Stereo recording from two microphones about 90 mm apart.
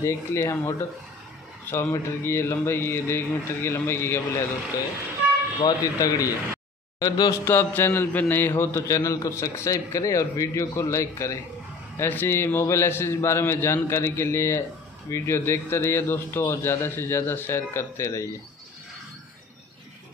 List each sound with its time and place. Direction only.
0.0 s a man's voice: 35° left (ahead or behind)
5.6 s a man's voice: 40° left (ahead or behind)
7.4 s a man's voice: 25° left (ahead or behind)